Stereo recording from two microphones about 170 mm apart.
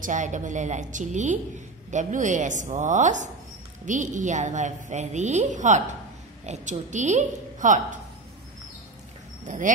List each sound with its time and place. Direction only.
0.0 s a woman's voice: 45° right (ahead or behind)
9.5 s a woman's voice: 45° right (ahead or behind)